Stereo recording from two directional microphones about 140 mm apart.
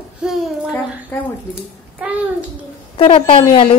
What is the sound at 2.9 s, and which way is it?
Speech, 40° left (ahead or behind).